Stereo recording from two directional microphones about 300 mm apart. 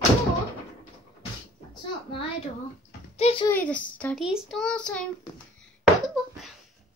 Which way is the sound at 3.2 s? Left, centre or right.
Centre.